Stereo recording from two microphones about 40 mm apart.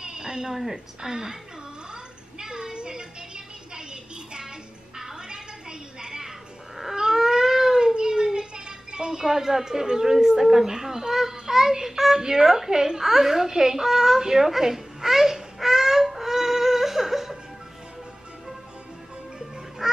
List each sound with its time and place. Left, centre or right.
0.0 s a woman's voice: centre
2.3 s a sound: centre
6.8 s cat: centre
10.1 s a child's voice: centre
14.2 s babbling: centre
19.8 s duck: centre